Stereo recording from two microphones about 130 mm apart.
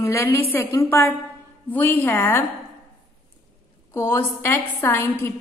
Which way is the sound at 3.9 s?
20° left (ahead or behind).